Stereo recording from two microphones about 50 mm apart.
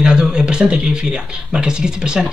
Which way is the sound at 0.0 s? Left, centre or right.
Centre.